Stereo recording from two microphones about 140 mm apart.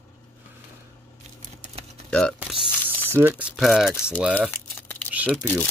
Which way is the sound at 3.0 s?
15° right (ahead or behind).